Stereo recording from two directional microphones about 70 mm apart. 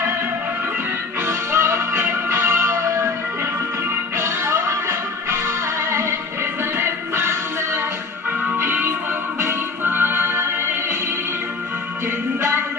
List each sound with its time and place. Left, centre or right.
1.2 s music: right
4.2 s music: right